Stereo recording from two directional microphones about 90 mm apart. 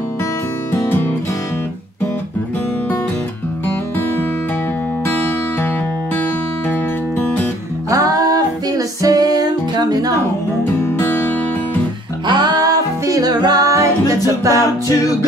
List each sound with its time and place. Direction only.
0.8 s music: 20° left (ahead or behind)
5.0 s music: 25° left (ahead or behind)
7.2 s music: 20° left (ahead or behind)
7.9 s music: 45° right (ahead or behind)
11.0 s music: 25° left (ahead or behind)
12.3 s music: 50° right (ahead or behind)